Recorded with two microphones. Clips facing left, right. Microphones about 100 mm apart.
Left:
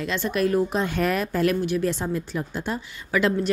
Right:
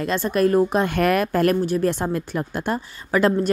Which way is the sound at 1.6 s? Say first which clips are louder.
Right 3 dB; 40° right (ahead or behind).